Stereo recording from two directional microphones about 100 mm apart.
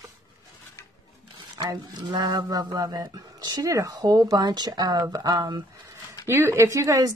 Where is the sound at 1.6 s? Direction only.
45° right (ahead or behind).